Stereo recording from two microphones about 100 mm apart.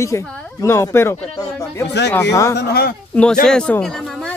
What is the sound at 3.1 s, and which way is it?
Speech, 10° left (ahead or behind).